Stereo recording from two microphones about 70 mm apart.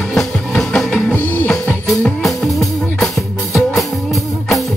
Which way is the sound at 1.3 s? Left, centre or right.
Left.